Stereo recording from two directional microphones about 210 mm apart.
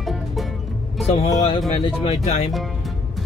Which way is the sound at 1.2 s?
20° left (ahead or behind).